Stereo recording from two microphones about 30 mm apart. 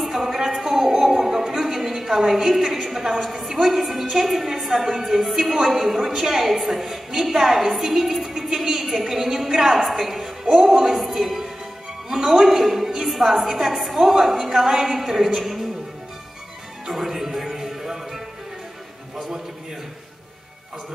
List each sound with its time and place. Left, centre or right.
0.0 s a sound: centre
3.6 s a woman's voice: centre
16.9 s music: centre